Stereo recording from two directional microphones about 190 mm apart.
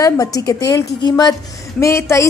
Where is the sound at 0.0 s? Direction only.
20° left (ahead or behind).